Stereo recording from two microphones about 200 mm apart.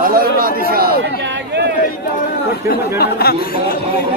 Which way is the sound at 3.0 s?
50° left (ahead or behind).